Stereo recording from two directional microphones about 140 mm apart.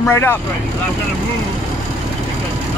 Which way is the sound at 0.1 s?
15° left (ahead or behind).